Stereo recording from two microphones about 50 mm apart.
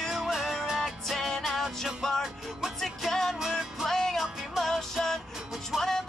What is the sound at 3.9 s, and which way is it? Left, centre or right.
Music, centre.